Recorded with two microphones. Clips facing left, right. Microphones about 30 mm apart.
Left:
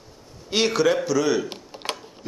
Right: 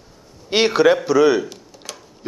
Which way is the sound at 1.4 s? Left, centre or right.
Left.